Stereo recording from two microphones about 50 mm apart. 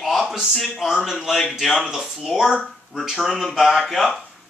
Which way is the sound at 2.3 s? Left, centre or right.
Centre.